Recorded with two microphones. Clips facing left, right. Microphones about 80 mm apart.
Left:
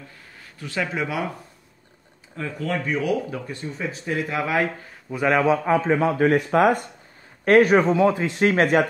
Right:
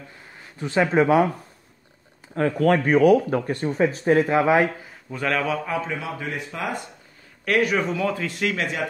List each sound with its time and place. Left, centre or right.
0.4 s speech: right
2.3 s speech: right
5.1 s a man's voice: centre; by 6.9 s left
7.4 s a man's voice: left